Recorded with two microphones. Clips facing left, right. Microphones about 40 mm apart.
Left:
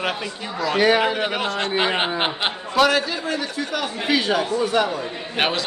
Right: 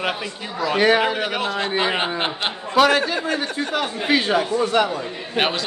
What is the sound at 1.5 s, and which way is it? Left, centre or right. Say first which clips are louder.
Speech: even; centre.